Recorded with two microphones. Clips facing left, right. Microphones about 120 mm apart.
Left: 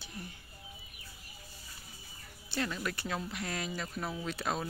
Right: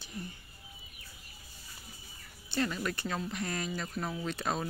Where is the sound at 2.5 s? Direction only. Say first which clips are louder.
Right 3 dB; centre (ahead or behind).